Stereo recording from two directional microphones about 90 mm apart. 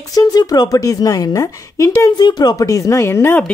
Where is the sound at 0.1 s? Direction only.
50° left (ahead or behind).